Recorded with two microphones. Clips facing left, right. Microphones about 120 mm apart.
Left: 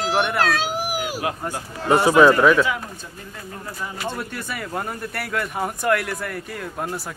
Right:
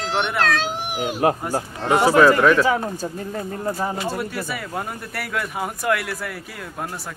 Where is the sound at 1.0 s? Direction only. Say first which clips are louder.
Right 5 dB; 40° right (ahead or behind).